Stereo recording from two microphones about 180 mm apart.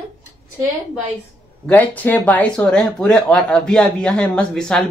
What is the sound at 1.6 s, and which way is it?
Speech, 10° left (ahead or behind).